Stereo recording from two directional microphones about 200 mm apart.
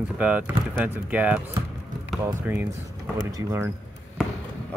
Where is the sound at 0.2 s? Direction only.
5° right (ahead or behind).